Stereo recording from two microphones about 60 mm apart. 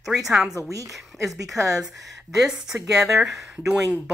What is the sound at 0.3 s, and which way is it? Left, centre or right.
Speech, centre.